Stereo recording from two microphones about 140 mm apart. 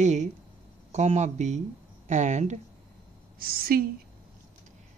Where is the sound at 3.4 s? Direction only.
90° right.